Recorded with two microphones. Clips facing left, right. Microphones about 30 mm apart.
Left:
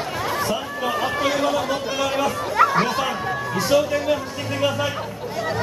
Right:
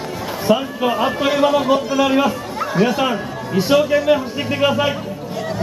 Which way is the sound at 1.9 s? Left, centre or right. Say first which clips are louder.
Right 6 dB; centre.